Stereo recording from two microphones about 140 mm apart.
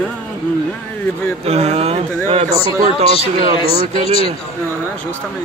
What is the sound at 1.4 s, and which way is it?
Speech, 45° right (ahead or behind).